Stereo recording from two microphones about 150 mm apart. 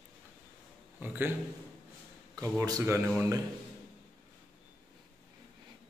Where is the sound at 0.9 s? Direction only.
15° right (ahead or behind).